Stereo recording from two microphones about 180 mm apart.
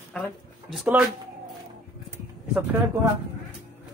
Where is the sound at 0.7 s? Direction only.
5° right (ahead or behind).